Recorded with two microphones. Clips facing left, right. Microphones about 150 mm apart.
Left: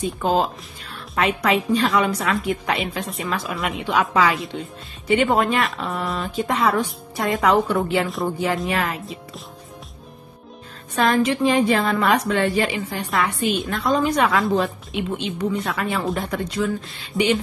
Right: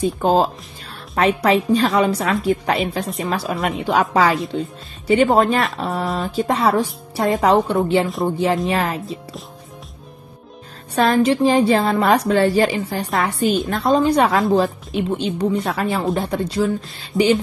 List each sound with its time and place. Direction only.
0.0 s speech: 35° right (ahead or behind)
11.0 s speech: 35° right (ahead or behind)
17.1 s a sound: centre (ahead or behind)